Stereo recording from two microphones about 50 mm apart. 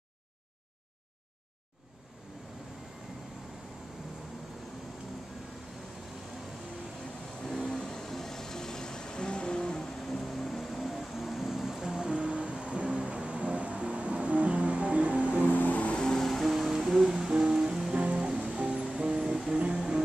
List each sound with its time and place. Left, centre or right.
7.6 s music: centre; by 15.2 s right
15.4 s music: left
16.0 s music: centre
17.9 s music: right
19.5 s music: centre